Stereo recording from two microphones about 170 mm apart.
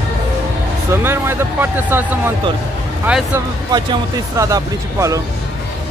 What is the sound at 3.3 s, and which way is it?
A man's voice, 20° right (ahead or behind).